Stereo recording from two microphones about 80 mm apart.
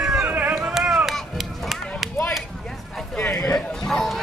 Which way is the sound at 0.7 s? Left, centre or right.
Centre.